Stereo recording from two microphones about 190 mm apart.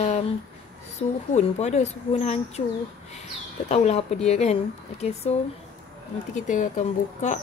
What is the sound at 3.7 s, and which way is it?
Speech, 35° left (ahead or behind).